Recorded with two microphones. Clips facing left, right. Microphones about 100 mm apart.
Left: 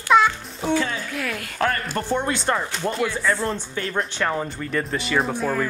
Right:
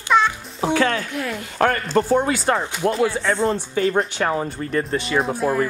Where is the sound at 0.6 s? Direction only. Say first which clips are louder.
Right 4 dB; 70° right (ahead or behind).